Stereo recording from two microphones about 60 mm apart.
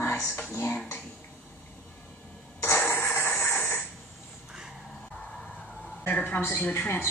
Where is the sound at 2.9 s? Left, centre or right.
Left.